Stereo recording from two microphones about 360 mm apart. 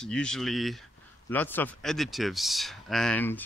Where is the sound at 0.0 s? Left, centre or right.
Centre.